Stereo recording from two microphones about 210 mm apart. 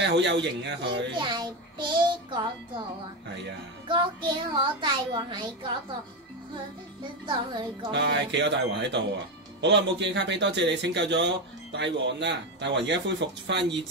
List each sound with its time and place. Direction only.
0.0 s speech: 55° right (ahead or behind)
1.1 s a child's voice: 20° right (ahead or behind)
3.9 s speech: 20° right (ahead or behind)
7.2 s speech: 20° right (ahead or behind)
7.9 s speech: 55° right (ahead or behind)